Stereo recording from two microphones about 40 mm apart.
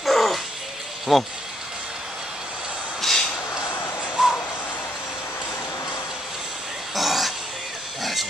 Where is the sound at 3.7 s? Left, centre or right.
Left.